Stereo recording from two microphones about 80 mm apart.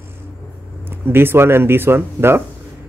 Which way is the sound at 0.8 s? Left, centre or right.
Right.